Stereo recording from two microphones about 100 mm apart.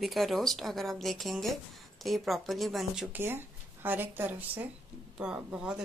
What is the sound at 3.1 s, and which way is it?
Speech, 20° right (ahead or behind).